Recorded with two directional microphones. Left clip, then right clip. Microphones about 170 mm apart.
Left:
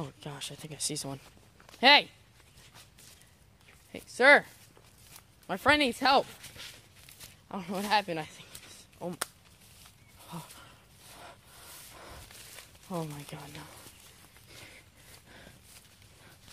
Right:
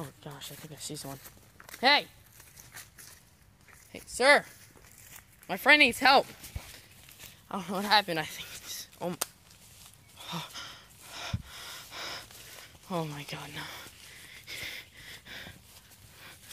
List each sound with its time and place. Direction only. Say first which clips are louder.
0.0 s speech: left 3 dB; 40° left (ahead or behind)
3.9 s speech: left 2 dB; 30° left (ahead or behind)
5.5 s speech: right 4 dB; 15° left (ahead or behind)
7.4 s speech: right 3 dB; centre (ahead or behind)
10.2 s breathing: right 8 dB; 10° right (ahead or behind)
12.8 s speech: right 3 dB; 5° right (ahead or behind)
14.5 s a sound: right 11 dB; 10° right (ahead or behind)